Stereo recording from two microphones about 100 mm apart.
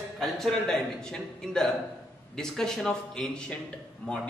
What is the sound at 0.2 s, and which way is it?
A man's voice, 5° left (ahead or behind).